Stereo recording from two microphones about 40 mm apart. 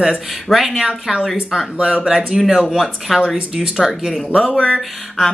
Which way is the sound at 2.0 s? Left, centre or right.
Centre.